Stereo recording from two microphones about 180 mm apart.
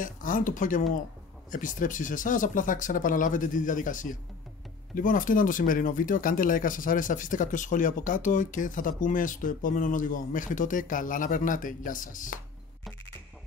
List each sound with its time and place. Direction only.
0.0 s speech: 50° left (ahead or behind)